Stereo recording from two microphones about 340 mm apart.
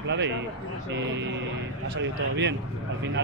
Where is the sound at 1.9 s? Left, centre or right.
Right.